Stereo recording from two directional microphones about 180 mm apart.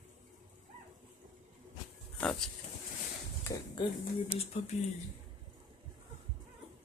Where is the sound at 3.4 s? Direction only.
15° left (ahead or behind).